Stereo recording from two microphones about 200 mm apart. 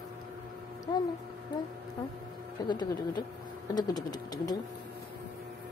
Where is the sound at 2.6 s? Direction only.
20° left (ahead or behind).